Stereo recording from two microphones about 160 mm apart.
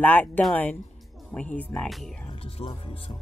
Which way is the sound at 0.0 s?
10° left (ahead or behind).